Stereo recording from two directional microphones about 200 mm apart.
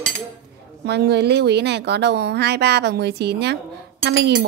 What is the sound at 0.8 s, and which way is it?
Speech, 55° right (ahead or behind).